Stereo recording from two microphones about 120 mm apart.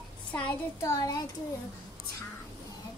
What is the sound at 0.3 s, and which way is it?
Speech, 15° left (ahead or behind).